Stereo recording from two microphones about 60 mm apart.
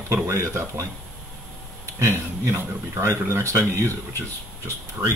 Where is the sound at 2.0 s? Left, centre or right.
Right.